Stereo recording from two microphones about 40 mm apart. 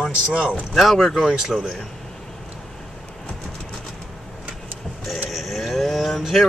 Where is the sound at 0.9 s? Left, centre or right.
Centre.